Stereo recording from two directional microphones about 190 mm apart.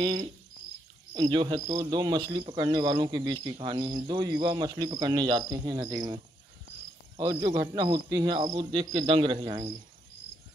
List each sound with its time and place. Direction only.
0.0 s speech: 25° right (ahead or behind)
7.2 s speech: 20° right (ahead or behind)